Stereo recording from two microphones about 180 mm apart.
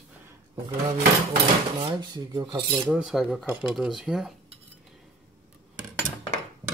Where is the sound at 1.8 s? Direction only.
25° right (ahead or behind).